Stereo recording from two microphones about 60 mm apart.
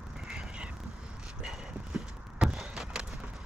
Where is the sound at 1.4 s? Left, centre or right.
Centre.